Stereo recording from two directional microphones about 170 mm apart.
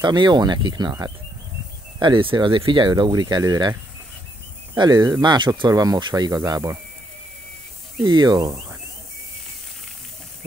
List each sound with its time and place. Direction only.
0.0 s speech: 25° right (ahead or behind)
4.7 s speech: 25° right (ahead or behind)
8.0 s speech: 25° right (ahead or behind)